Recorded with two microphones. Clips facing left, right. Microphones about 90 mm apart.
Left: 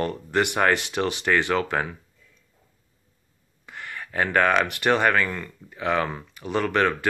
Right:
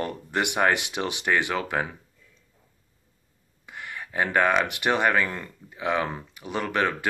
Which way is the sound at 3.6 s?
10° right (ahead or behind).